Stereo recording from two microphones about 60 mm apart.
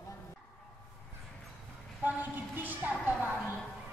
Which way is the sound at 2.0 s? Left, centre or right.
Right.